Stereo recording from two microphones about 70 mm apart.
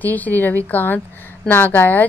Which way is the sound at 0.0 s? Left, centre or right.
Left.